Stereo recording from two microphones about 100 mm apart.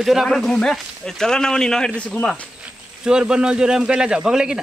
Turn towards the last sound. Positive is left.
turn(degrees=-5)  # may be behind; listen again after turning